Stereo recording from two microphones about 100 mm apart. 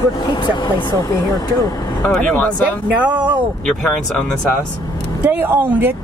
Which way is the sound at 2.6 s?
15° right (ahead or behind).